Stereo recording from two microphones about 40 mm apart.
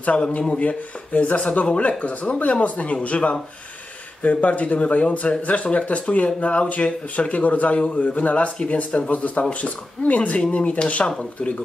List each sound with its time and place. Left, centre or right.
0.0 s speech: left